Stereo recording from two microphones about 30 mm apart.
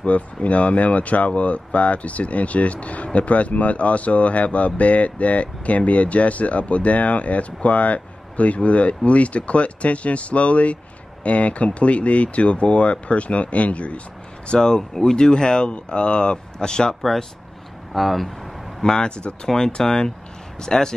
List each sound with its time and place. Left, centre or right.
0.0 s speech: left
14.5 s speech: left
15.7 s speech: left
17.0 s speech: centre
18.8 s speech: left
19.4 s speech: centre